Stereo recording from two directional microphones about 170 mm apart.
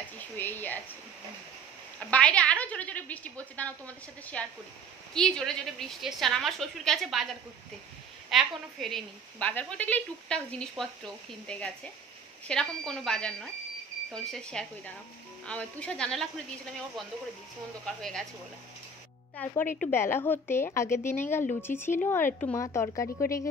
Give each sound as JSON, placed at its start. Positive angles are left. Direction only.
{"t": 0.4, "sound": "a woman's voice", "side_deg": 10}
{"t": 2.0, "sound": "a woman's voice", "side_deg": 10}
{"t": 8.3, "sound": "a woman's voice", "side_deg": 0}
{"t": 17.8, "sound": "a woman's voice", "side_deg": 5}
{"t": 19.3, "sound": "a woman's voice", "side_deg": 10}